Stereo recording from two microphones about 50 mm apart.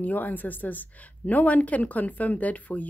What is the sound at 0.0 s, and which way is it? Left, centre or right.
A woman's voice, left.